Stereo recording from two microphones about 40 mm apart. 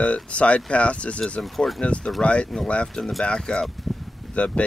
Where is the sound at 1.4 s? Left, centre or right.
Centre.